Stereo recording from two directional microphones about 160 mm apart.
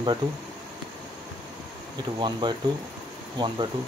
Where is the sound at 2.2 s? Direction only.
30° right (ahead or behind).